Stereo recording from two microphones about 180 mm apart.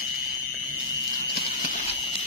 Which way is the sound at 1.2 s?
55° left (ahead or behind).